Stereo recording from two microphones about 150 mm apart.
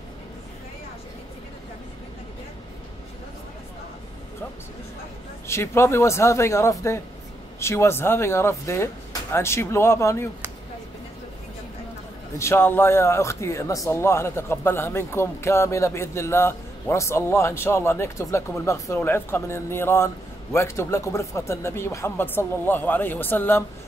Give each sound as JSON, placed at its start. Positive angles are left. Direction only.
{"t": 5.5, "sound": "speech", "side_deg": 20}
{"t": 12.4, "sound": "speech", "side_deg": 15}